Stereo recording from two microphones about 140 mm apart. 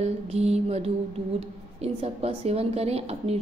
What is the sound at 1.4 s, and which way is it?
A woman's voice, 45° right (ahead or behind).